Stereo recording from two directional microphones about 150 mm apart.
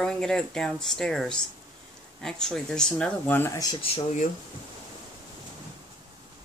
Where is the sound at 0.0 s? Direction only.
5° left (ahead or behind).